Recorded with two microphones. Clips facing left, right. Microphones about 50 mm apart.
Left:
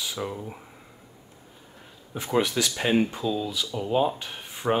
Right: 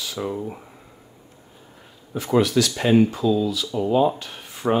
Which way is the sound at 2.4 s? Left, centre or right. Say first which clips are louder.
Right 5 dB; centre.